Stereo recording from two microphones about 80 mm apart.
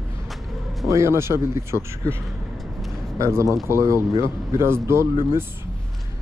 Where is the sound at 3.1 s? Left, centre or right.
Right.